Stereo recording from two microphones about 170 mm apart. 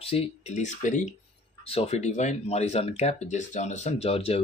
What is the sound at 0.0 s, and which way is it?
Speech, 35° left (ahead or behind).